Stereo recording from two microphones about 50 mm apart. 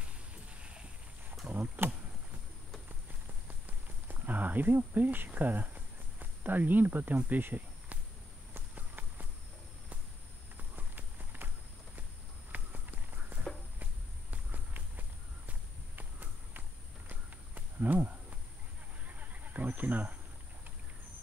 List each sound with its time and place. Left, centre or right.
0.0 s a sound: right
1.8 s insect: right
3.6 s insect: right
6.1 s speech: right
8.7 s run: right
10.8 s clip-clop: right
12.4 s walk: right
19.0 s a sound: right